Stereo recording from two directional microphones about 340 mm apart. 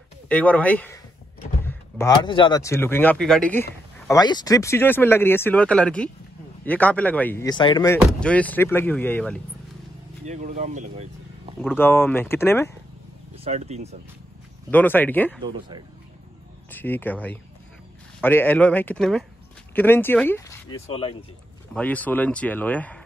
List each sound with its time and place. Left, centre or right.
0.3 s speech: centre
10.2 s speech: right
11.6 s speech: centre
13.4 s speech: centre
14.7 s speech: centre
16.7 s speech: centre
21.7 s speech: centre